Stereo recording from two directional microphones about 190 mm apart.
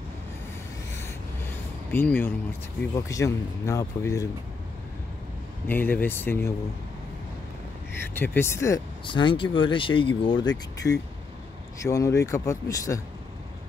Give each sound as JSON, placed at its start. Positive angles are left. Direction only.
{"t": 1.9, "sound": "speech", "side_deg": 10}
{"t": 5.7, "sound": "speech", "side_deg": 10}
{"t": 8.1, "sound": "speech", "side_deg": 10}
{"t": 11.8, "sound": "speech", "side_deg": 15}